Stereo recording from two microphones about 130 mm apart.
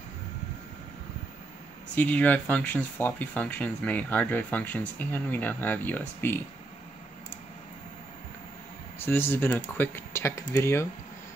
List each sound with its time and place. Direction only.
2.0 s speech: 10° left (ahead or behind)
9.0 s speech: 15° left (ahead or behind)